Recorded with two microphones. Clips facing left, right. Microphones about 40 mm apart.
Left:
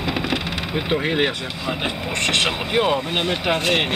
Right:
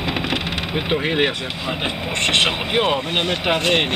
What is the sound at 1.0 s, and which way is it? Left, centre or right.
Speech, centre.